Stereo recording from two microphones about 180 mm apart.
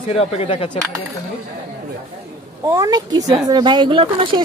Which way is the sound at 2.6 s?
20° right (ahead or behind).